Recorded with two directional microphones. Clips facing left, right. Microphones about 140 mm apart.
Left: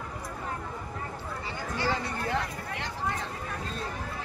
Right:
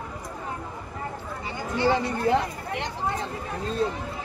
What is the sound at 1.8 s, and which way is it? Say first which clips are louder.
Speech: right 8 dB; 20° right (ahead or behind).